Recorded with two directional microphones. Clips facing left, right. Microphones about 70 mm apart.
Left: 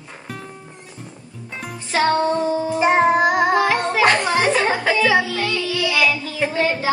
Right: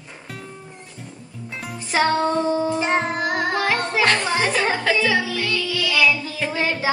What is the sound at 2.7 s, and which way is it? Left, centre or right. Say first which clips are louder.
Singing: left 6 dB; centre.